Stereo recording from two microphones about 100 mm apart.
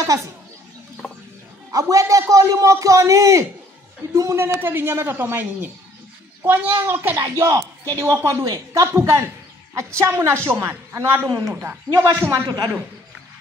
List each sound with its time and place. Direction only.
0.0 s speech: 30° right (ahead or behind)
1.7 s a man's voice: 35° right (ahead or behind)
11.9 s a man's voice: 40° right (ahead or behind)